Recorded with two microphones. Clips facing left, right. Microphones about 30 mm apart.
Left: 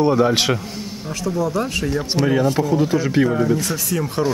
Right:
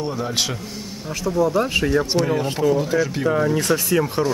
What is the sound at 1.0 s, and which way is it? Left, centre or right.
Speech, centre.